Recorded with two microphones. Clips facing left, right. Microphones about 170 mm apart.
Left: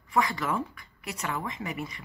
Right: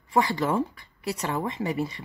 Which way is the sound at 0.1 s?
30° right (ahead or behind).